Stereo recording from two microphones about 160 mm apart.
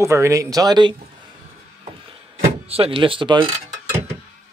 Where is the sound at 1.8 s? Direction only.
35° right (ahead or behind).